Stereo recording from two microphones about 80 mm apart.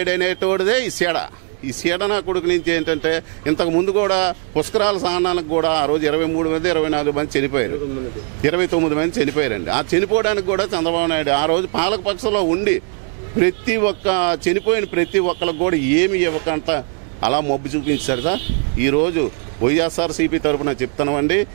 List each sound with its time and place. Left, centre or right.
0.0 s speech: centre